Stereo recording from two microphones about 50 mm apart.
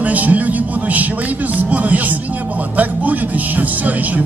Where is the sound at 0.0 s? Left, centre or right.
Right.